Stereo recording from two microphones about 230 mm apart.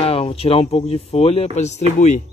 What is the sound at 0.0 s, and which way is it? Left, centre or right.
Speech, left.